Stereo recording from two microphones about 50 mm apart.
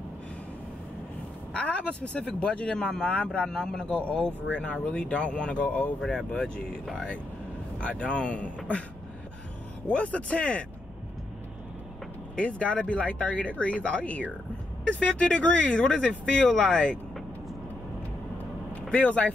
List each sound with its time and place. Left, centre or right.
1.5 s speech: left
5.9 s speech: centre; by 8.8 s left
9.8 s speech: left
12.4 s speech: left
18.8 s speech: left